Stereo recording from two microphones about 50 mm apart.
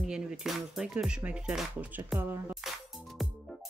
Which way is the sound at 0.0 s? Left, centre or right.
Centre.